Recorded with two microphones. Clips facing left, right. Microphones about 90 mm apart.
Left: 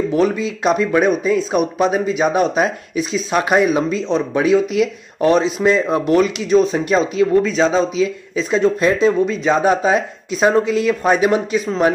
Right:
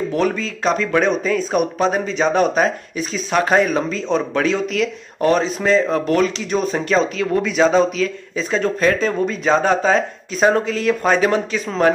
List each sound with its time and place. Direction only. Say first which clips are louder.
0.1 s speech: left 3 dB; 10° left (ahead or behind)
5.2 s speech: left 3 dB; 5° left (ahead or behind)
6.8 s speech: left 3 dB; 10° left (ahead or behind)
7.4 s speech: right 1 dB; 5° right (ahead or behind)